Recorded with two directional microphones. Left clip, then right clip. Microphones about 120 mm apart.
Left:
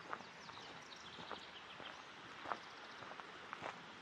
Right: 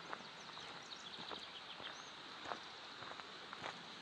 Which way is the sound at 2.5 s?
45° left (ahead or behind).